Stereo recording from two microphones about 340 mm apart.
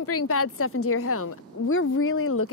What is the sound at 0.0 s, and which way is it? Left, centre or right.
A woman's voice, left.